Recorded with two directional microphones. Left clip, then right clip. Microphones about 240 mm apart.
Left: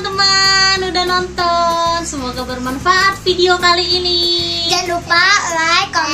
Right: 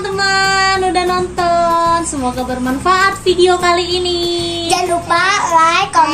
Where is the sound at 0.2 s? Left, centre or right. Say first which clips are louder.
Left 1 dB; centre.